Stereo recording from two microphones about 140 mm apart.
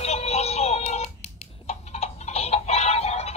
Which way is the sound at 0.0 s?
50° left (ahead or behind).